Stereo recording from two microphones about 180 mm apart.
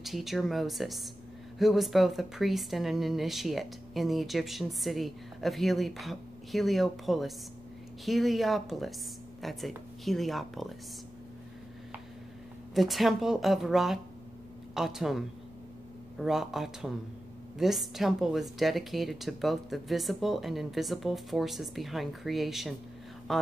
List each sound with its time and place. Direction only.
0.0 s speech: centre (ahead or behind)
12.7 s speech: centre (ahead or behind)